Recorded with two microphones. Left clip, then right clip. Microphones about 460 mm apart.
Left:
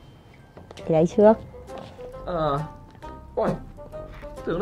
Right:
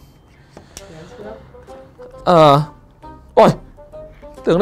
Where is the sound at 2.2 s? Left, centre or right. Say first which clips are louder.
Right 16 dB; right.